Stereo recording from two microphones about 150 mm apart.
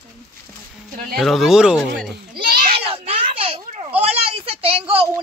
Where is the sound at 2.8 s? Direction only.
40° right (ahead or behind).